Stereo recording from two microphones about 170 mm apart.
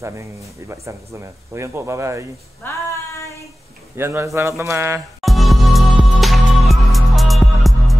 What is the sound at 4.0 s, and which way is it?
Speech, 15° right (ahead or behind).